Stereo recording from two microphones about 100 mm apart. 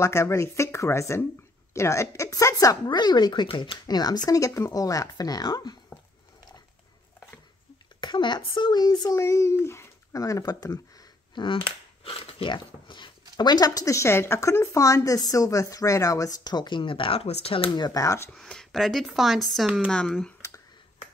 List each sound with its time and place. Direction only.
0.0 s speech: 30° left (ahead or behind); by 3.4 s 45° left (ahead or behind)
3.4 s speech: 55° left (ahead or behind)
3.8 s speech: 40° left (ahead or behind)
8.0 s speech: 50° left (ahead or behind)
9.2 s speech: 30° left (ahead or behind)
11.3 s a sound: 55° left (ahead or behind)
13.4 s speech: 45° left (ahead or behind); by 17.6 s 75° left (ahead or behind)
17.7 s speech: 45° left (ahead or behind)
18.0 s speech: 30° left (ahead or behind)
18.3 s speech: 5° left (ahead or behind)